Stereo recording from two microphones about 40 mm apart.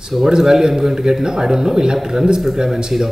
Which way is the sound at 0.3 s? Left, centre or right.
Centre.